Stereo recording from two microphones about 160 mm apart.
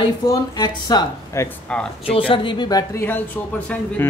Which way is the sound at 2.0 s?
35° left (ahead or behind).